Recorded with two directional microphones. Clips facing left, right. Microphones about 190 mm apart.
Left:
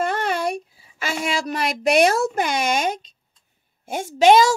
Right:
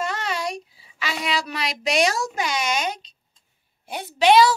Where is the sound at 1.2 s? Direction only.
45° left (ahead or behind).